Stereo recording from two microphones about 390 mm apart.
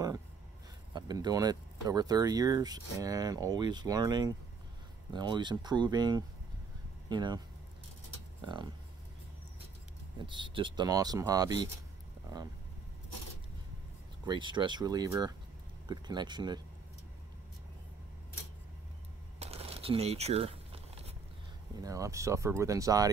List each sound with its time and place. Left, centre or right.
0.9 s speech: centre
10.2 s speech: centre
14.2 s speech: centre
19.4 s a sound: centre
21.8 s speech: centre